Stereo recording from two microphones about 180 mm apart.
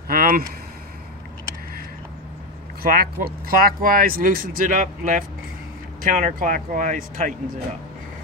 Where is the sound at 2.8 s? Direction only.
55° right (ahead or behind).